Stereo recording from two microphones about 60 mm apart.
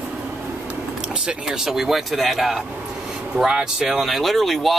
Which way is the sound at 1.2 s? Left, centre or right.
Centre.